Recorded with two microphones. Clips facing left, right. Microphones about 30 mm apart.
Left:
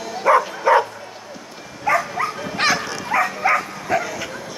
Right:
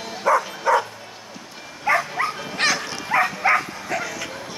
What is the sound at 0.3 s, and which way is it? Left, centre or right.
Dog, left.